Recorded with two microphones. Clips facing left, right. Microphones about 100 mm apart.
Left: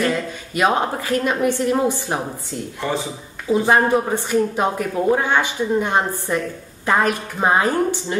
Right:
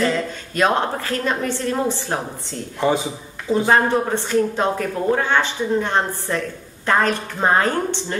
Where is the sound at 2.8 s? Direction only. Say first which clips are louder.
Right 5 dB; 20° right (ahead or behind).